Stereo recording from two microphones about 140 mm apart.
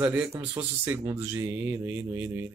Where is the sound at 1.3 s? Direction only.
20° right (ahead or behind).